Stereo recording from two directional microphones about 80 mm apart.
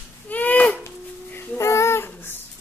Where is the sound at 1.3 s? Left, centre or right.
Left.